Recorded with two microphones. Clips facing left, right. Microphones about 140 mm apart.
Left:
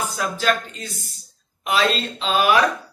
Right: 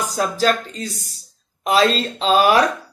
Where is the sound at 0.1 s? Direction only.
35° right (ahead or behind).